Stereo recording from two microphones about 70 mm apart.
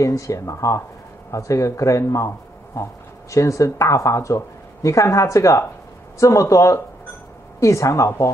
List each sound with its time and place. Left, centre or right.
0.0 s speech: left